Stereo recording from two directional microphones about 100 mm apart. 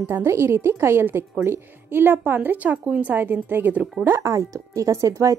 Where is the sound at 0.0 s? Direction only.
20° right (ahead or behind).